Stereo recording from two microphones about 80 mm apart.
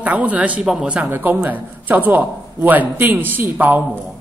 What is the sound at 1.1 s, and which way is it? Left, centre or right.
A man's voice, right.